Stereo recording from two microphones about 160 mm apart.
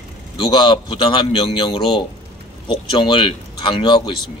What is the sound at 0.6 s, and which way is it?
A man's voice, 30° left (ahead or behind).